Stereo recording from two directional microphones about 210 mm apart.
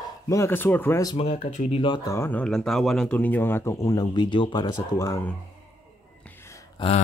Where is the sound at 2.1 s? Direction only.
10° left (ahead or behind).